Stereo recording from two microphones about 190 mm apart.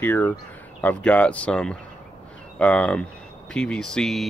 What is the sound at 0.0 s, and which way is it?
Speech, 10° left (ahead or behind).